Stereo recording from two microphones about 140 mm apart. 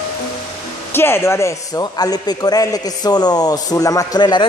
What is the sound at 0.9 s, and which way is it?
A man's voice, 15° left (ahead or behind).